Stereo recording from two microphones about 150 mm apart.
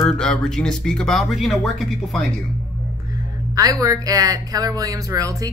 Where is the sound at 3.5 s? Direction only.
25° right (ahead or behind).